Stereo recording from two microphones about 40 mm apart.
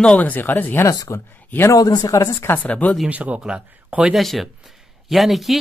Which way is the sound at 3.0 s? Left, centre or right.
Right.